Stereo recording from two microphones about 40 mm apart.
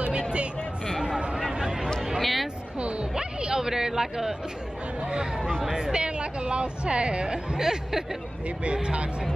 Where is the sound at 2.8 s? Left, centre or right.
Right.